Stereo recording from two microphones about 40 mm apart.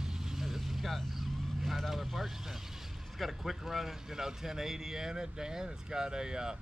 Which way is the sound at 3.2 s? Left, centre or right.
Centre.